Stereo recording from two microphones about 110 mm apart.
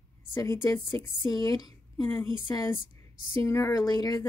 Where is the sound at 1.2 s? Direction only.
35° left (ahead or behind).